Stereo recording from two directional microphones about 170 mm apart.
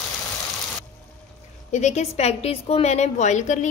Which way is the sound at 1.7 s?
45° left (ahead or behind).